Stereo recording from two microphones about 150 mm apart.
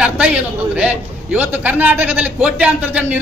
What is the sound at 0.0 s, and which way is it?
A man's voice, 5° right (ahead or behind).